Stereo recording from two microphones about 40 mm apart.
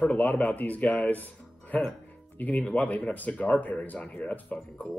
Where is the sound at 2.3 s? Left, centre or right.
Left.